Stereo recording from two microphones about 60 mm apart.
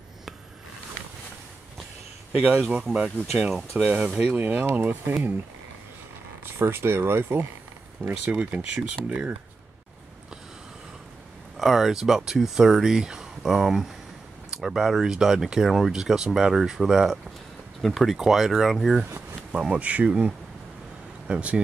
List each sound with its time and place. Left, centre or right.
2.7 s speech: centre; by 5.1 s right
6.6 s speech: right
8.1 s speech: right
11.5 s speech: centre
19.5 s speech: centre